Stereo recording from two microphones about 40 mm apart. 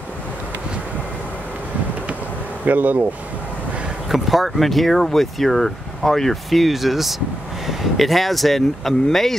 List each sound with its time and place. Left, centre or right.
2.6 s speech: right
4.1 s speech: centre